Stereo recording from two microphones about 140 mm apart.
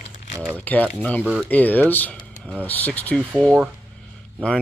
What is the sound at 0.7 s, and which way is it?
Speech, 10° left (ahead or behind).